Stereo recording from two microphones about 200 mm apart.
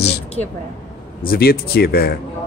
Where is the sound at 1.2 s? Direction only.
50° left (ahead or behind).